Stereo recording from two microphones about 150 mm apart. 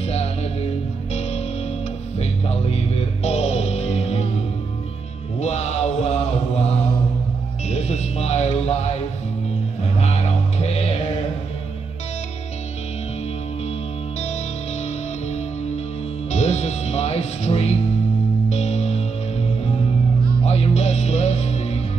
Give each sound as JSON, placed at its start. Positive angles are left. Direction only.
{"t": 0.0, "sound": "music", "side_deg": 45}
{"t": 2.1, "sound": "music", "side_deg": 45}
{"t": 5.4, "sound": "mantra", "side_deg": 45}
{"t": 7.7, "sound": "a sound", "side_deg": 45}
{"t": 10.6, "sound": "mantra", "side_deg": 45}
{"t": 16.3, "sound": "music", "side_deg": 45}
{"t": 20.4, "sound": "music", "side_deg": 45}